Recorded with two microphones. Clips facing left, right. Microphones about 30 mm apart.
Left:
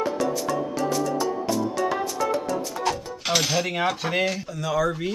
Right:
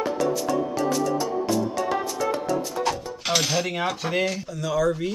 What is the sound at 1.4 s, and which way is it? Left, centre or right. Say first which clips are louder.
Music: even; centre.